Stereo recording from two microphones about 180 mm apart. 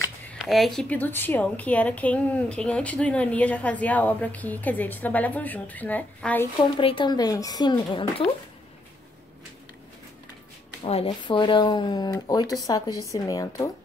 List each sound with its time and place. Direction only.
0.3 s a woman's voice: centre (ahead or behind)
6.6 s speech: 30° left (ahead or behind)
10.8 s speech: 35° left (ahead or behind)